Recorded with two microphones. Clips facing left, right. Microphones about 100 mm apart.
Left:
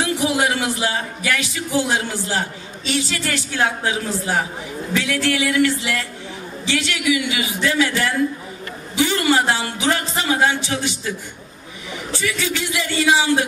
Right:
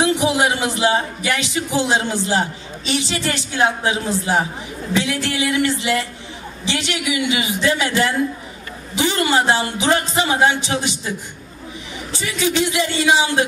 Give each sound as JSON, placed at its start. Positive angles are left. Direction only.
{"t": 0.0, "sound": "speech", "side_deg": -20}